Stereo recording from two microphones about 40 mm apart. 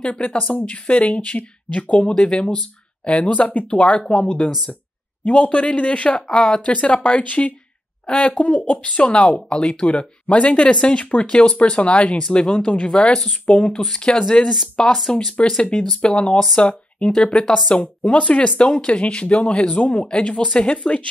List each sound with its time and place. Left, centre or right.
0.0 s speech: left
2.1 s speech: left
6.2 s speech: centre
9.5 s speech: left